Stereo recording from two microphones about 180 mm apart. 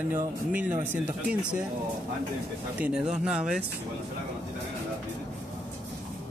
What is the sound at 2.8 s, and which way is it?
Speech, 5° right (ahead or behind).